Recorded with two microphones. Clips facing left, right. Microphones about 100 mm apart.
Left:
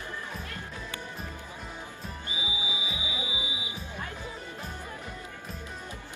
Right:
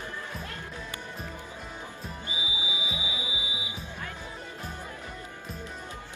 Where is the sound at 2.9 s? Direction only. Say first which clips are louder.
Even; 25° right (ahead or behind).